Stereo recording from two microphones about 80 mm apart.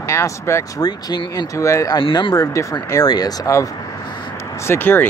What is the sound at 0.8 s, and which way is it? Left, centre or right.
Speech, left.